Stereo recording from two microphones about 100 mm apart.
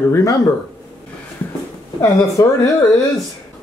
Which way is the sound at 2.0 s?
30° left (ahead or behind).